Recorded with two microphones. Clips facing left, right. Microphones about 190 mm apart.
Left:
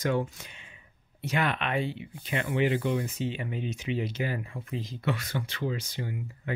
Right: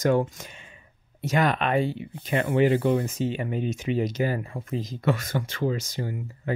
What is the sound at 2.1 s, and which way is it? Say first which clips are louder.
Speech: right 6 dB; 55° right (ahead or behind).